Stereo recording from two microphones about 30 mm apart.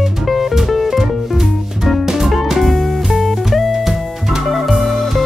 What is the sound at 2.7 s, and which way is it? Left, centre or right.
Music, centre.